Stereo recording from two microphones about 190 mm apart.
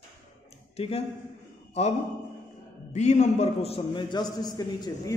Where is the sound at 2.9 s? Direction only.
35° left (ahead or behind); by 5.1 s 20° left (ahead or behind).